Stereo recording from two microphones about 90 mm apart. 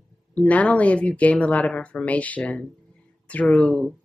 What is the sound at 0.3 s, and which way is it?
Speech, 15° left (ahead or behind).